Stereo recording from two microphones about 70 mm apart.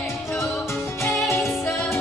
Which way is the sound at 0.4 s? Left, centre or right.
Left.